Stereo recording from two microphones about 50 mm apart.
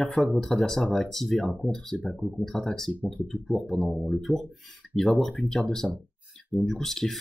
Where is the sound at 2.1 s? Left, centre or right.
Centre.